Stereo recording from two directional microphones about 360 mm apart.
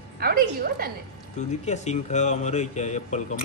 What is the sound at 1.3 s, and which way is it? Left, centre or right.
A man's voice, centre.